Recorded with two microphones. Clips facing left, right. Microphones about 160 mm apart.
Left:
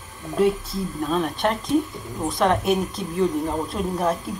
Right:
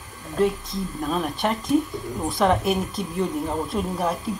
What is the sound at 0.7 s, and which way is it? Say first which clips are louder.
Speech: left 2 dB; 5° right (ahead or behind).